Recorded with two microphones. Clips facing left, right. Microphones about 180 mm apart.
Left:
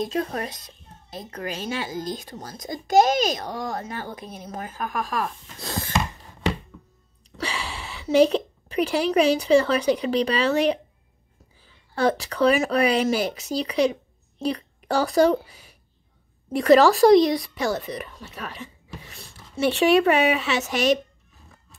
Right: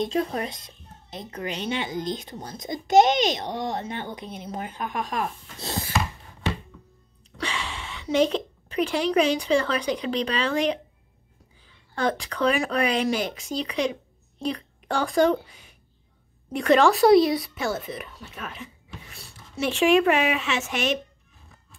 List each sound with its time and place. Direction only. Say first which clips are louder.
0.1 s a child's voice: right 1 dB; 20° right (ahead or behind)
7.3 s a sound: left 1 dB; 10° left (ahead or behind)
8.3 s a woman's voice: left 3 dB; 10° left (ahead or behind)
11.9 s a woman's voice: left 4 dB; 5° left (ahead or behind)